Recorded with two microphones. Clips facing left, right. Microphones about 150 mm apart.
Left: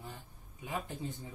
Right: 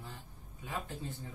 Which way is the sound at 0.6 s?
15° left (ahead or behind).